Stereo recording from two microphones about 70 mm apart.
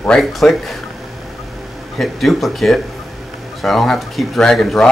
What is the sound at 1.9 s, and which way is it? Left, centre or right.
Speech, centre.